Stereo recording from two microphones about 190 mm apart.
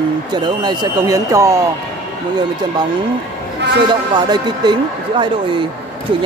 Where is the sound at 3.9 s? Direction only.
20° right (ahead or behind).